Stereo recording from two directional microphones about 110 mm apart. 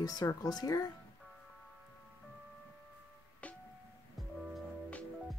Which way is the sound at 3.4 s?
10° left (ahead or behind).